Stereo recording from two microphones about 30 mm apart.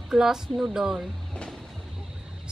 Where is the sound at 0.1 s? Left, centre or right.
Right.